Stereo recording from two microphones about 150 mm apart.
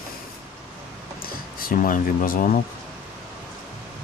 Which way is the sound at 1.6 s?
65° left (ahead or behind).